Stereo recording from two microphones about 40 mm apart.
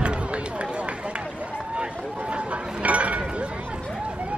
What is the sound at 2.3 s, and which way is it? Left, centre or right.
Chatter, right.